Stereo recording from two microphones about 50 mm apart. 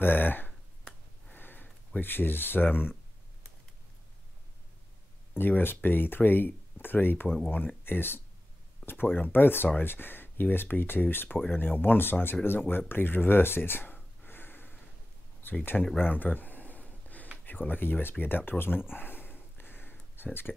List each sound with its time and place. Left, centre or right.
0.0 s speech: left
1.3 s sniff: left
2.0 s speech: left
5.4 s speech: left
16.0 s a sound: left
17.5 s speech: left
18.9 s a sound: left
20.5 s speech: centre